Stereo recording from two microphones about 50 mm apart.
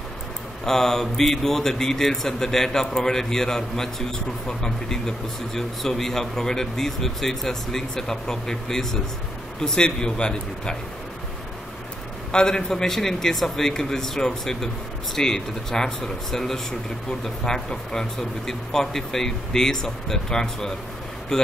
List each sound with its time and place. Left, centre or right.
0.7 s a man's voice: centre
12.3 s a man's voice: centre